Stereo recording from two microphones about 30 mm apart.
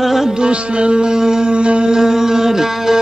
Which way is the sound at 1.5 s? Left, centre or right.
Right.